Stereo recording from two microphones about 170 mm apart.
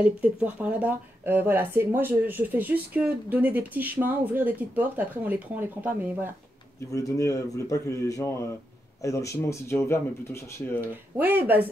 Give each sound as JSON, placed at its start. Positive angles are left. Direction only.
{"t": 0.0, "sound": "speech", "side_deg": -5}
{"t": 6.9, "sound": "speech", "side_deg": 20}
{"t": 11.1, "sound": "speech", "side_deg": -10}